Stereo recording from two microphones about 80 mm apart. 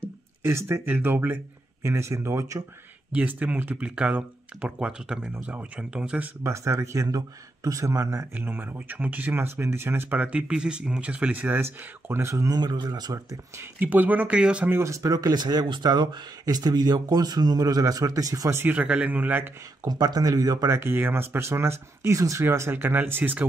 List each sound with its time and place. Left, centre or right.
0.0 s speech: right
3.1 s speech: centre
6.4 s speech: right
8.4 s speech: right
12.4 s speech: right
13.6 s speech: right
14.7 s speech: right
15.9 s speech: right
18.6 s speech: right
19.9 s speech: right
20.7 s speech: right